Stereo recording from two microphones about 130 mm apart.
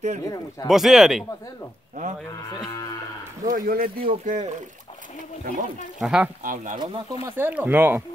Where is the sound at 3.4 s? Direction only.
90° right.